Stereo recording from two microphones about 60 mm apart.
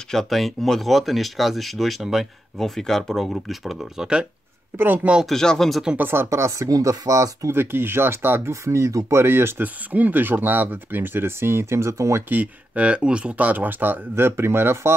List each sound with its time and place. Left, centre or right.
0.1 s speech: centre
4.7 s speech: right
5.2 s speech: centre
5.9 s speech: right
6.2 s speech: right
7.5 s speech: right
8.6 s speech: right
9.8 s speech: right
12.3 s speech: right